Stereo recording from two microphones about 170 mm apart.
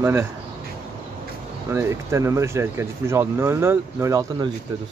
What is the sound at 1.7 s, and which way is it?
Speech, 15° right (ahead or behind).